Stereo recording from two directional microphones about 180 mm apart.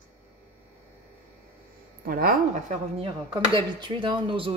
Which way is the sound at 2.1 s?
55° right (ahead or behind).